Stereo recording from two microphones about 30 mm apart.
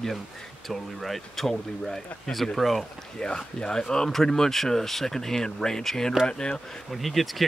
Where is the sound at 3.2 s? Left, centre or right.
Left.